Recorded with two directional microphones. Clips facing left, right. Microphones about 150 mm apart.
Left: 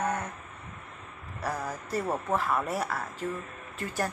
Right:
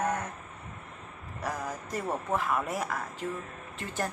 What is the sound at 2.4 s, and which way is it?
Speech, 10° right (ahead or behind).